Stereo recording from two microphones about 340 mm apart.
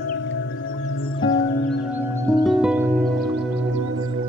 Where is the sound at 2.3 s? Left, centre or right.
Centre.